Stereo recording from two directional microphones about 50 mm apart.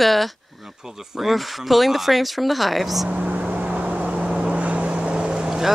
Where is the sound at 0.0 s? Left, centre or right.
Centre.